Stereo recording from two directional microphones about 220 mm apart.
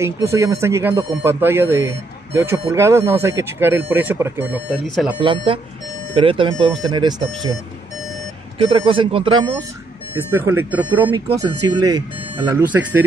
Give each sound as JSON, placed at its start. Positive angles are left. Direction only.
{"t": 0.0, "sound": "speech", "side_deg": -10}
{"t": 4.6, "sound": "speech", "side_deg": 0}
{"t": 5.2, "sound": "speech", "side_deg": -25}
{"t": 8.5, "sound": "speech", "side_deg": -25}
{"t": 10.1, "sound": "speech", "side_deg": -10}
{"t": 12.5, "sound": "speech", "side_deg": -5}